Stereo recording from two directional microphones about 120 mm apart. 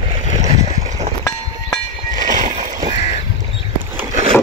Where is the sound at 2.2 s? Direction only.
90° right.